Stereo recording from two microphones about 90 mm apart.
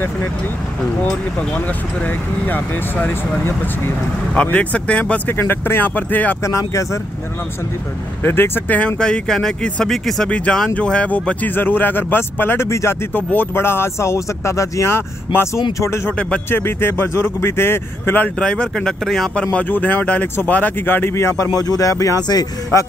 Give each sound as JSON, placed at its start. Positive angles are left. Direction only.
{"t": 2.4, "sound": "speech", "side_deg": 20}
{"t": 6.4, "sound": "speech", "side_deg": 35}
{"t": 8.2, "sound": "speech", "side_deg": 25}
{"t": 13.1, "sound": "speech", "side_deg": 20}
{"t": 21.5, "sound": "speech", "side_deg": 40}